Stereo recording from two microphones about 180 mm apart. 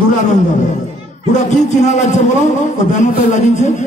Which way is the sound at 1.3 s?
40° left (ahead or behind).